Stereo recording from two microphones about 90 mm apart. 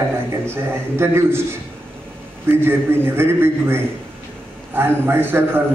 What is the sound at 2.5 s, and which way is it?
A man's voice, 25° right (ahead or behind).